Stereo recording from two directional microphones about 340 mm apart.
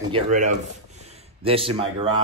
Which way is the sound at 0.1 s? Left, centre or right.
Right.